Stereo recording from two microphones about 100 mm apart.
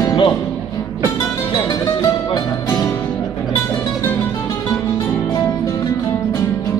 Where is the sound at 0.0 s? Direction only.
50° left (ahead or behind).